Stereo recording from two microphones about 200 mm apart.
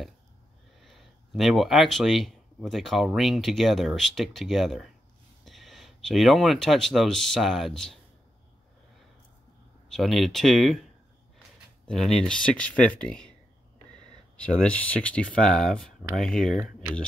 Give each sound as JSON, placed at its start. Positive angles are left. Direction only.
{"t": 0.8, "sound": "speech", "side_deg": 0}
{"t": 9.8, "sound": "speech", "side_deg": 0}
{"t": 11.9, "sound": "speech", "side_deg": 0}
{"t": 14.3, "sound": "speech", "side_deg": 5}